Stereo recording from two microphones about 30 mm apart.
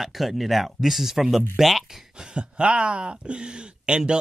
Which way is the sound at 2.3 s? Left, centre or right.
Right.